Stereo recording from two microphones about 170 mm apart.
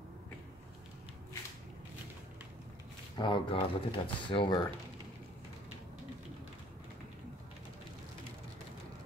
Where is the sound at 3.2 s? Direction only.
30° left (ahead or behind).